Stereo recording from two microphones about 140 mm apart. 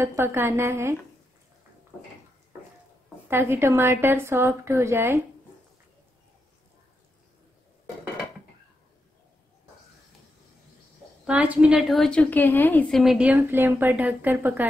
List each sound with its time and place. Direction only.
0.0 s a woman's voice: 15° right (ahead or behind)
3.3 s a woman's voice: 15° right (ahead or behind)
11.2 s a woman's voice: 10° right (ahead or behind)